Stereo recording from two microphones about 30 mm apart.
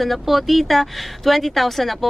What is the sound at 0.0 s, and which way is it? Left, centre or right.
Speech, centre.